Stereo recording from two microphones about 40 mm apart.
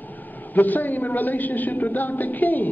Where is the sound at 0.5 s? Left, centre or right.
Left.